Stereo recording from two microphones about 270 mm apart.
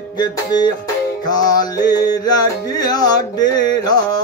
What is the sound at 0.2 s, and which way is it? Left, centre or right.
Music, centre.